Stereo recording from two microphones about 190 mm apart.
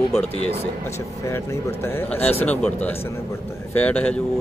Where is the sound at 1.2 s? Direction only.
15° left (ahead or behind).